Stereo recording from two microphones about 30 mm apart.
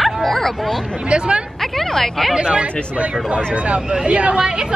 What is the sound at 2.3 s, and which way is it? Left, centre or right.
Speech, right.